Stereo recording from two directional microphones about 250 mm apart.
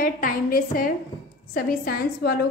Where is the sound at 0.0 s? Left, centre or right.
Left.